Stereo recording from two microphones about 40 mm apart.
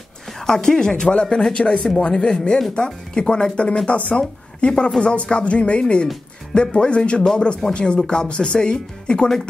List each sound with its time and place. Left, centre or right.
0.4 s a woman's voice: centre